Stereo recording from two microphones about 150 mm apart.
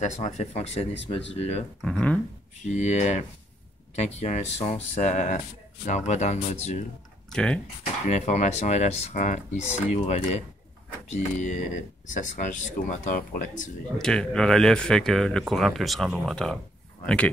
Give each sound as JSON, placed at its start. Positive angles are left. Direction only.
{"t": 0.0, "sound": "speech", "side_deg": 55}
{"t": 1.8, "sound": "speech", "side_deg": 5}
{"t": 2.6, "sound": "speech", "side_deg": 50}
{"t": 7.2, "sound": "speech", "side_deg": 5}
{"t": 8.1, "sound": "speech", "side_deg": 50}
{"t": 13.9, "sound": "speech", "side_deg": 5}